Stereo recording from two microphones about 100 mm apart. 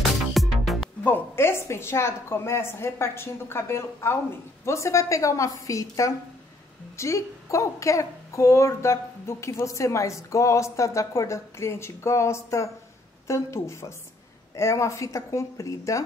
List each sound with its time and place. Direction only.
0.0 s music: centre (ahead or behind)
1.0 s a woman's voice: 20° left (ahead or behind)